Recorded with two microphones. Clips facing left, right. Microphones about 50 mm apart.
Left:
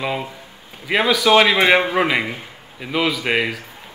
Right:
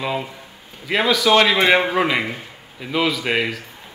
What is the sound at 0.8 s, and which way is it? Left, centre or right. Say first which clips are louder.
A man's voice: left 1 dB; centre.